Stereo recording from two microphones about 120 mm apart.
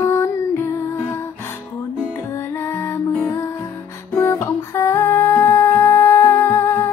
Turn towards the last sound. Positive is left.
turn(degrees=20)  # may be behind; listen again after turning